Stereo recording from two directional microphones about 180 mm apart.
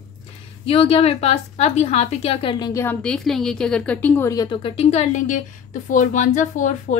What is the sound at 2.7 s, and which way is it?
A woman's voice, 10° left (ahead or behind).